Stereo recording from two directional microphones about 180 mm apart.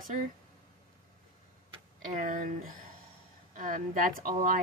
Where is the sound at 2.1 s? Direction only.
45° right (ahead or behind).